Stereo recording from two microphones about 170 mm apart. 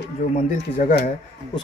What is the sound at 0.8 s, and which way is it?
Speech, 55° left (ahead or behind).